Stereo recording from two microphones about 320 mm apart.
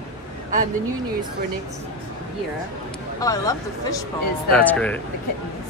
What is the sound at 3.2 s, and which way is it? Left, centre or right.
Speech, centre.